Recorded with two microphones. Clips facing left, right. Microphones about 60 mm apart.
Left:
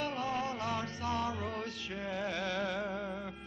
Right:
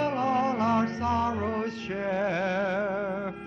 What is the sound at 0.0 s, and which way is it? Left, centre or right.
Music, right.